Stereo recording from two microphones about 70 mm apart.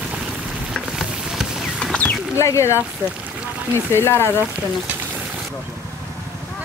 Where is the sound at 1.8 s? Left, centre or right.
Centre.